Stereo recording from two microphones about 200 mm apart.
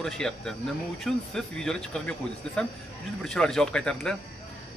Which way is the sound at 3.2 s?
5° left (ahead or behind).